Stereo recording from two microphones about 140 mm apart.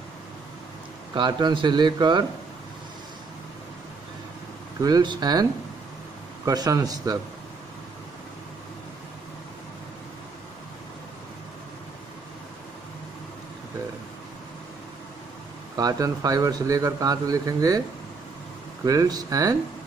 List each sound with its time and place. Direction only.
1.1 s a man's voice: 35° right (ahead or behind)
4.8 s a man's voice: 30° right (ahead or behind)
15.7 s a man's voice: 25° right (ahead or behind)
18.9 s a man's voice: 25° right (ahead or behind)